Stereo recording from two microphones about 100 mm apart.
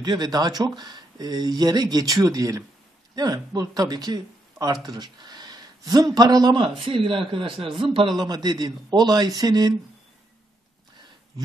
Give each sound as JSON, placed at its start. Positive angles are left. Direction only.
{"t": 0.0, "sound": "speech", "side_deg": -45}
{"t": 6.8, "sound": "a man's voice", "side_deg": -60}
{"t": 8.2, "sound": "speech", "side_deg": -45}